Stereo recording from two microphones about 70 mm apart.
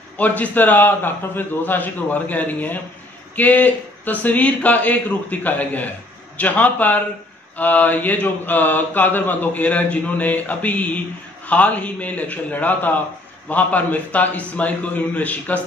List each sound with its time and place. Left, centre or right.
0.2 s mantra: left